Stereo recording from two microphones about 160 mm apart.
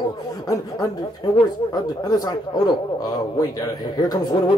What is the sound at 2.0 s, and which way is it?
Speech, 25° left (ahead or behind).